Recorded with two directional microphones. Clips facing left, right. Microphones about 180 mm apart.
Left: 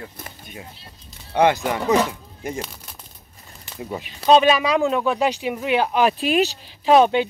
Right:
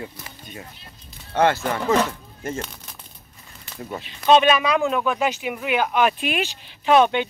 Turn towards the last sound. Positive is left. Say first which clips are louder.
# left 2 dB
turn(degrees=35)  # may be behind; listen again after turning